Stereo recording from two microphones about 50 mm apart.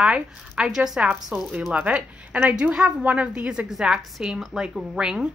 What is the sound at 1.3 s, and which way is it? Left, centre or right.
Speech, right.